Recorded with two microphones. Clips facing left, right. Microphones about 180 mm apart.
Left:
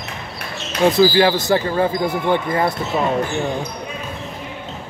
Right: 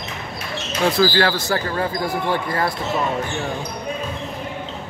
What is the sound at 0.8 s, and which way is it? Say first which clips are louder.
Speech: left 4 dB; 20° left (ahead or behind).